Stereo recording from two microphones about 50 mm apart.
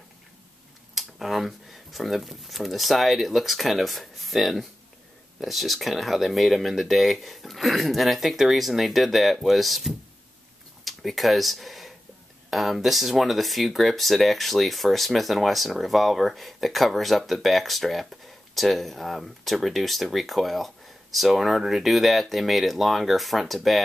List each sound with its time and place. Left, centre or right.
0.9 s speech: centre